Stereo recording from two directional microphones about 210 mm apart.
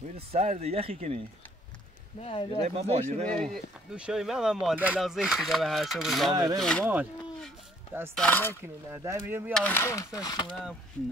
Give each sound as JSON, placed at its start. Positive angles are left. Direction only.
{"t": 0.3, "sound": "speech", "side_deg": -30}
{"t": 2.2, "sound": "speech", "side_deg": 25}
{"t": 2.6, "sound": "speech", "side_deg": -30}
{"t": 3.5, "sound": "speech", "side_deg": -5}
{"t": 6.3, "sound": "speech", "side_deg": -20}
{"t": 6.8, "sound": "speech", "side_deg": -10}
{"t": 8.2, "sound": "speech", "side_deg": 10}
{"t": 8.9, "sound": "speech", "side_deg": -10}
{"t": 9.5, "sound": "speech", "side_deg": 5}